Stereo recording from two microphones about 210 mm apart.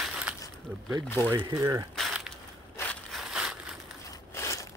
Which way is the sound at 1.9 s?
Centre (ahead or behind).